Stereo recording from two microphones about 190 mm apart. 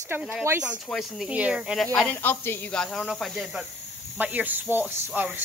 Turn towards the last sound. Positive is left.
turn(degrees=-10)  # may be behind; listen again after turning